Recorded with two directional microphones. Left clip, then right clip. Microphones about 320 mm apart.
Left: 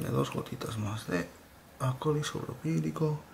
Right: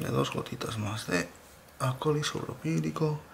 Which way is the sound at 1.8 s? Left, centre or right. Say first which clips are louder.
Right 2 dB; centre.